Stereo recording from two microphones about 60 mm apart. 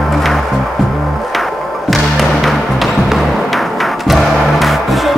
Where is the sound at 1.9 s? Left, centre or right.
Centre.